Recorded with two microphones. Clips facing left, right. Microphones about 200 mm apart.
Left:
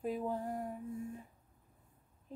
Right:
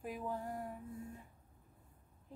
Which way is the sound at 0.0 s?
25° left (ahead or behind).